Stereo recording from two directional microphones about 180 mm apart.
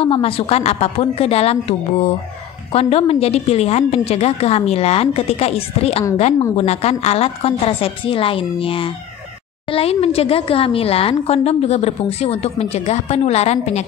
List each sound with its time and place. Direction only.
0.0 s a woman's voice: 30° left (ahead or behind)